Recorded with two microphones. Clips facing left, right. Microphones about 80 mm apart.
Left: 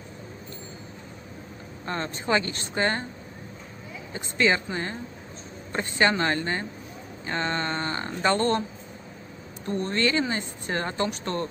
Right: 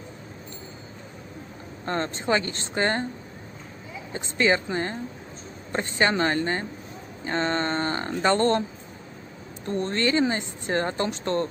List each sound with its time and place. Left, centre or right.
1.9 s speech: right
4.1 s speech: right
9.8 s speech: right